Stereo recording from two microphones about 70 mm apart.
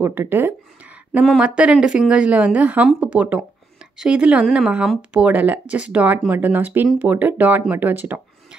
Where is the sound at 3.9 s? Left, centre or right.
Centre.